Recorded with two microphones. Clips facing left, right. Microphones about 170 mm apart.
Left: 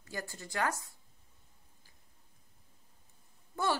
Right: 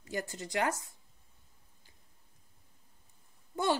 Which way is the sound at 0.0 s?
20° right (ahead or behind).